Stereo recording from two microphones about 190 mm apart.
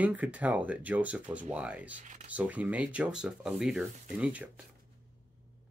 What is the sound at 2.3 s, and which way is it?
Speech, 10° right (ahead or behind).